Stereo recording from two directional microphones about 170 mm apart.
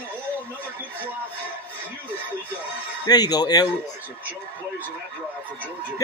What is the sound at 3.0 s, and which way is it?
Speech, 25° left (ahead or behind).